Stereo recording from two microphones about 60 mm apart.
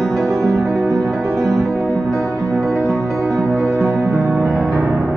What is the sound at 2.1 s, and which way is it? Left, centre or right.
Music, right.